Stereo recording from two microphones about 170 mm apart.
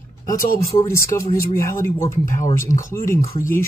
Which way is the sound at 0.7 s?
15° left (ahead or behind).